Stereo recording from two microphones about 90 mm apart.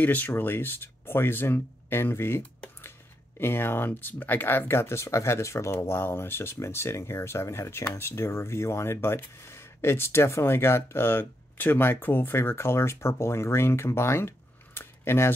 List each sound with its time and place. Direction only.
0.0 s speech: 20° left (ahead or behind)